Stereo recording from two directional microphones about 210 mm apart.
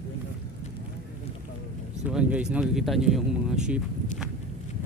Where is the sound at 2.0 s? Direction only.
5° right (ahead or behind).